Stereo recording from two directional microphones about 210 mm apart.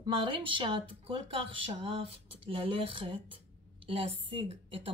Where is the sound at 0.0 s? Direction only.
25° right (ahead or behind).